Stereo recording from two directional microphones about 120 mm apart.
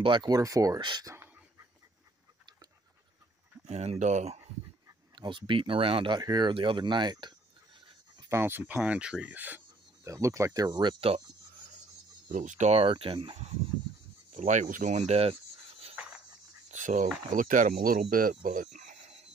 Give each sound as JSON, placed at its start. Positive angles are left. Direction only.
{"t": 0.0, "sound": "speech", "side_deg": -40}
{"t": 0.7, "sound": "speech", "side_deg": -40}
{"t": 1.0, "sound": "a sound", "side_deg": -20}
{"t": 3.6, "sound": "speech", "side_deg": -60}
{"t": 5.1, "sound": "speech", "side_deg": -40}
{"t": 8.3, "sound": "speech", "side_deg": -20}
{"t": 10.0, "sound": "speech", "side_deg": -25}
{"t": 12.3, "sound": "speech", "side_deg": -90}
{"t": 12.7, "sound": "speech", "side_deg": -50}
{"t": 14.3, "sound": "speech", "side_deg": -90}
{"t": 16.7, "sound": "speech", "side_deg": -90}
{"t": 18.3, "sound": "a sound", "side_deg": -85}